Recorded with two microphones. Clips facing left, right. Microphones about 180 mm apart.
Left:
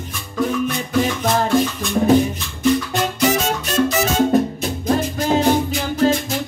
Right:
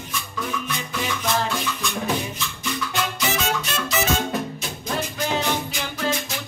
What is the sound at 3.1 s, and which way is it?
Music, 40° left (ahead or behind).